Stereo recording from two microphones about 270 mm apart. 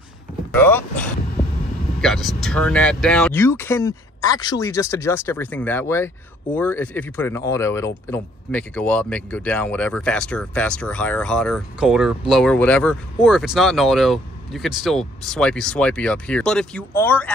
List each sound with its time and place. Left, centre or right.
0.6 s speech: centre